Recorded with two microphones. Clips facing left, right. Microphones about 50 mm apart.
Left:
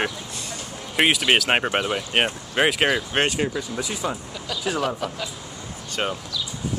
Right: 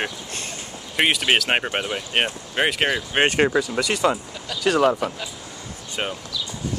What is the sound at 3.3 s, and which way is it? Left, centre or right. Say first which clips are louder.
Speech: right 6 dB; right.